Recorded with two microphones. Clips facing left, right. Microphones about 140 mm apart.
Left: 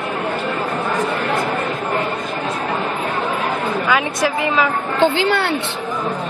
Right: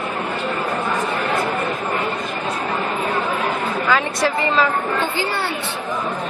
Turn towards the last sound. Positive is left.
turn(degrees=70)  # may be behind; listen again after turning